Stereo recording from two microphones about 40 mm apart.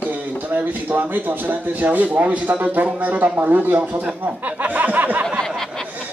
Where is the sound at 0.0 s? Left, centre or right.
Right.